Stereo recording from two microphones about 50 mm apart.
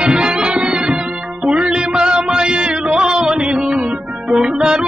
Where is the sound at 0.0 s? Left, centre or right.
Centre.